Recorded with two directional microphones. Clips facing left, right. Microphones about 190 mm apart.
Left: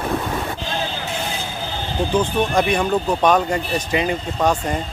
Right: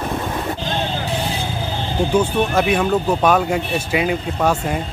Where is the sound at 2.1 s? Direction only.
5° right (ahead or behind).